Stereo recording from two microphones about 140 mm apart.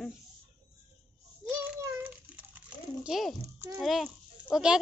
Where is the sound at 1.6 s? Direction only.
10° right (ahead or behind).